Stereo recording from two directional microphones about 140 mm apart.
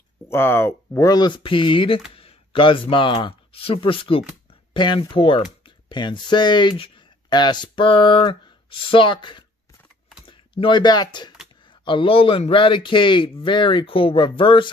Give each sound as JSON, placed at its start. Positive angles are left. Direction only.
{"t": 0.3, "sound": "speech", "side_deg": 15}